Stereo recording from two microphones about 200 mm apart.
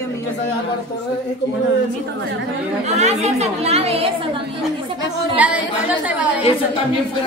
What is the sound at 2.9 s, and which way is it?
A woman's voice, 35° right (ahead or behind).